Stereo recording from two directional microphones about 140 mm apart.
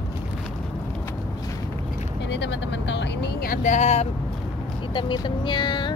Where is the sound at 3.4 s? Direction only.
75° left (ahead or behind); by 4.0 s 55° left (ahead or behind).